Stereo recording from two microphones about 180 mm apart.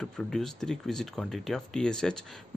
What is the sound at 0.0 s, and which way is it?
Speech, 5° left (ahead or behind).